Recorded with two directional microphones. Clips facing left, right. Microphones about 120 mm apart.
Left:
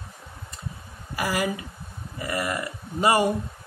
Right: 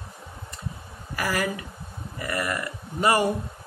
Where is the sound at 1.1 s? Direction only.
20° left (ahead or behind).